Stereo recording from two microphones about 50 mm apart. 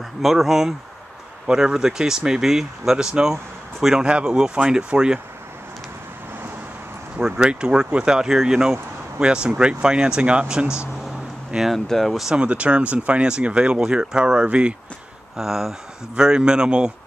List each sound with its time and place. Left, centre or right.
0.2 s speech: centre
7.2 s speech: centre
11.7 s speech: centre
12.4 s speech: right
15.3 s speech: centre